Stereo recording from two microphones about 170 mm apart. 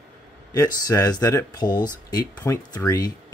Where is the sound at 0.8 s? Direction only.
20° left (ahead or behind).